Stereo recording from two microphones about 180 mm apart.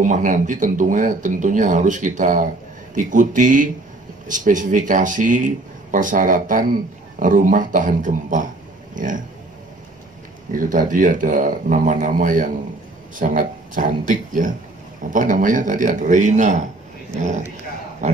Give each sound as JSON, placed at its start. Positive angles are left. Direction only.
{"t": 0.0, "sound": "speech", "side_deg": -45}
{"t": 10.5, "sound": "speech", "side_deg": -50}